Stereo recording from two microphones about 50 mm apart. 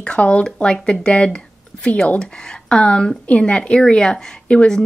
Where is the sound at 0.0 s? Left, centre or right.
Left.